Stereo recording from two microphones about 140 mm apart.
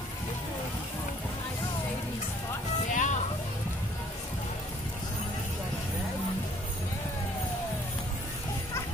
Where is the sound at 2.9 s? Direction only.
60° left (ahead or behind).